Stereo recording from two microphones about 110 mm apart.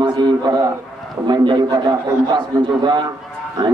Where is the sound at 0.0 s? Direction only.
40° right (ahead or behind).